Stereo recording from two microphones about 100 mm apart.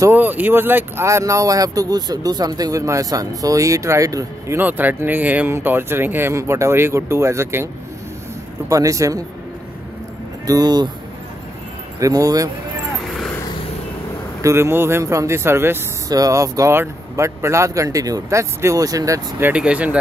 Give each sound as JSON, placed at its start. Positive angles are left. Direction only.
{"t": 0.1, "sound": "speech", "side_deg": -20}
{"t": 4.6, "sound": "speech", "side_deg": -20}
{"t": 10.4, "sound": "speech", "side_deg": -40}
{"t": 12.0, "sound": "speech", "side_deg": -35}
{"t": 14.4, "sound": "speech", "side_deg": -25}
{"t": 16.1, "sound": "speech", "side_deg": -35}
{"t": 19.5, "sound": "speech", "side_deg": -10}